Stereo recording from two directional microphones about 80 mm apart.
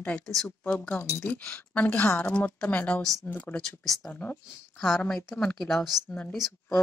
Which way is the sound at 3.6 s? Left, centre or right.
Centre.